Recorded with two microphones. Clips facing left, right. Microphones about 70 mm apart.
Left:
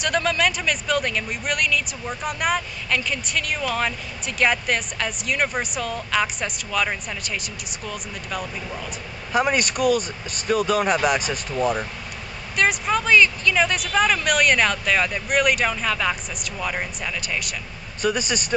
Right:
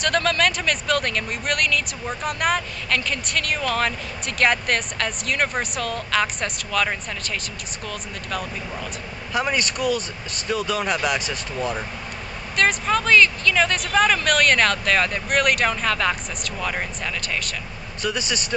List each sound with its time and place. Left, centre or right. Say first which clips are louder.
0.0 s a man's voice: right 1 dB; centre
9.8 s speech: left 3 dB; left
10.8 s speech: left 3 dB; centre